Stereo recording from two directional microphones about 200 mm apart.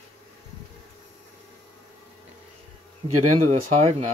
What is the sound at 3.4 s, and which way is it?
Speech, 35° right (ahead or behind).